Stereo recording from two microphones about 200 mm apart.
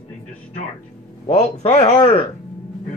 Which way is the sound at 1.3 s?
35° left (ahead or behind).